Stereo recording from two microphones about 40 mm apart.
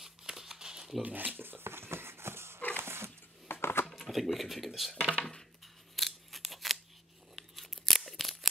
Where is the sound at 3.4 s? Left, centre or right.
Left.